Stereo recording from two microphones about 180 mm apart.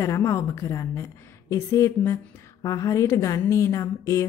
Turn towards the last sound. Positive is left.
turn(degrees=15)  # may be behind; listen again after turning